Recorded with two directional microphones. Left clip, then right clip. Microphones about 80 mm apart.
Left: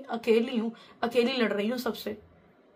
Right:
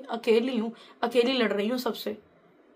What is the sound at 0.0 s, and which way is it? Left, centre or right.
A woman's voice, right.